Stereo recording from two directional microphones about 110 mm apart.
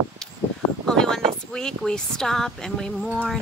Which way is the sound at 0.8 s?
5° left (ahead or behind).